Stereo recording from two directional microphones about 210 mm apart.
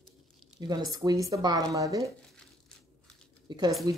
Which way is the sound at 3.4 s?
20° right (ahead or behind).